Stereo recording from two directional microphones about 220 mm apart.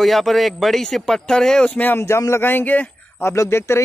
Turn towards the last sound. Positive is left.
turn(degrees=10)  # may be behind; listen again after turning